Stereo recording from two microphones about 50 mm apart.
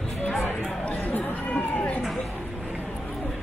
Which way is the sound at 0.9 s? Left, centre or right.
Left.